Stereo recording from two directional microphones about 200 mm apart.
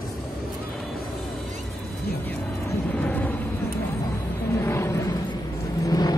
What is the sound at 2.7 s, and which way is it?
Vehicle, 10° left (ahead or behind).